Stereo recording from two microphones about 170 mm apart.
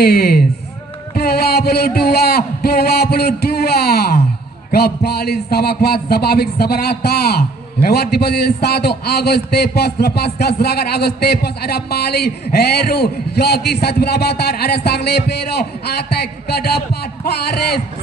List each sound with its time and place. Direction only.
0.0 s a man's voice: 65° left (ahead or behind)